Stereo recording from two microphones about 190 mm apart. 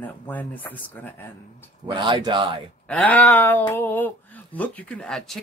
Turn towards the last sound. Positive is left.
turn(degrees=5)  # may be behind; listen again after turning